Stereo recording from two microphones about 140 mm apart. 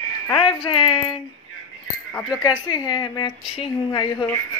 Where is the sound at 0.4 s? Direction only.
40° left (ahead or behind).